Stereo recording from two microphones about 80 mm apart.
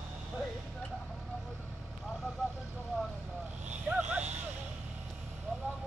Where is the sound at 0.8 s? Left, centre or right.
Centre.